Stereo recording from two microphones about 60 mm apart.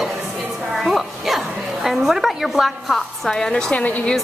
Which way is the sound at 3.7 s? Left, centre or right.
Left.